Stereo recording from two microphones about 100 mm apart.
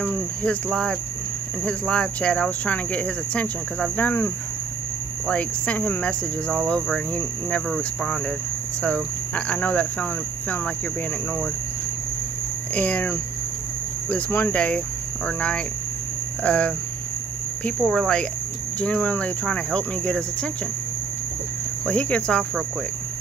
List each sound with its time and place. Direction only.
0.0 s speech: 15° left (ahead or behind)
12.7 s speech: 15° left (ahead or behind)
21.8 s speech: 10° left (ahead or behind)